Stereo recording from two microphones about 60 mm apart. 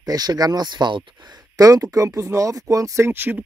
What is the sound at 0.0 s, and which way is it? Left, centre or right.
Speech, right.